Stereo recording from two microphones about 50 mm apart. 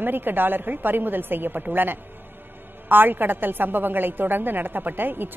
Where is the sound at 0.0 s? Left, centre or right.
Right.